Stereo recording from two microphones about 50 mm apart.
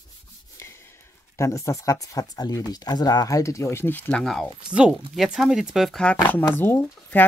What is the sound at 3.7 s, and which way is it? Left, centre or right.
Speech, left.